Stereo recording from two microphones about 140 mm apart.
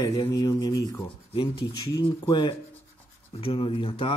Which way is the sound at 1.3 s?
40° left (ahead or behind).